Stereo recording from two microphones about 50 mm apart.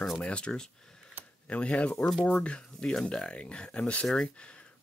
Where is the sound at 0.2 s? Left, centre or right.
Left.